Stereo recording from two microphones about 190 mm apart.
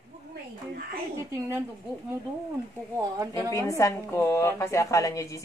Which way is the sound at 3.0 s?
20° right (ahead or behind).